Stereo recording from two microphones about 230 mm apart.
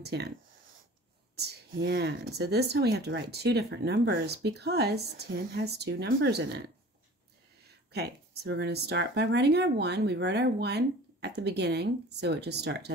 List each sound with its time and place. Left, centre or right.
0.0 s speech: right
1.3 s speech: right
7.9 s speech: right